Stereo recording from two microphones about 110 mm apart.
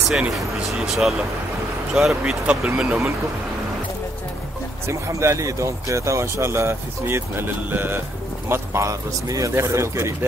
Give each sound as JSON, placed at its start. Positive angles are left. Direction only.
{"t": 0.1, "sound": "speech", "side_deg": -5}
{"t": 4.8, "sound": "speech", "side_deg": -25}